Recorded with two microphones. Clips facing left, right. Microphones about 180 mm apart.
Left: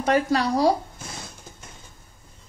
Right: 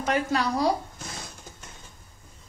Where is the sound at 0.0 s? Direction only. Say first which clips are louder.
Left 4 dB; 35° left (ahead or behind).